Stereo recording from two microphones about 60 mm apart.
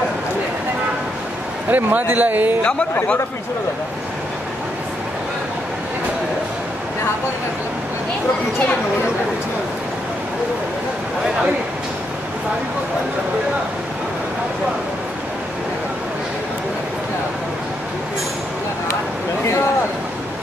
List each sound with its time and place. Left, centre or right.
1.7 s a man's voice: right